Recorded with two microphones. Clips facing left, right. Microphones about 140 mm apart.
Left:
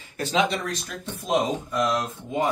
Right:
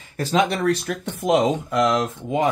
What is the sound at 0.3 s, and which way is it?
Speech, 60° right (ahead or behind).